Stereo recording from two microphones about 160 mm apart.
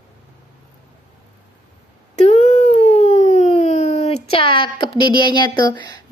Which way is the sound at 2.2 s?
45° left (ahead or behind).